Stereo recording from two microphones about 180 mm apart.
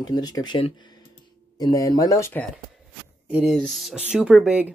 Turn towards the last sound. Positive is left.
turn(degrees=-5)  # may be behind; listen again after turning